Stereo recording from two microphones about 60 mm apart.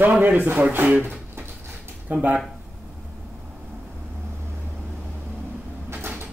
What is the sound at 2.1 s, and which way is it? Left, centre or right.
Speech, right.